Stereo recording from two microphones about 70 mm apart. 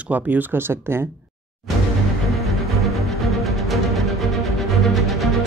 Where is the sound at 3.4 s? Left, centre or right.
Centre.